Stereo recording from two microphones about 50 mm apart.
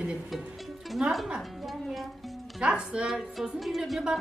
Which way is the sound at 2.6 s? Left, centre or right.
Right.